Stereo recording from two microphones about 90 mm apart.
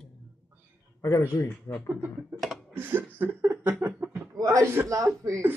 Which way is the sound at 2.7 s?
25° right (ahead or behind).